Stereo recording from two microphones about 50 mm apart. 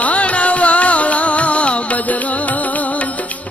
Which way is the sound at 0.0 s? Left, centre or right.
Left.